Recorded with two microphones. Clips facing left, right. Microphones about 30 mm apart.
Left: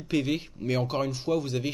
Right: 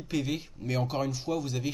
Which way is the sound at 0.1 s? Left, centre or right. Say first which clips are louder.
Left 4 dB; centre.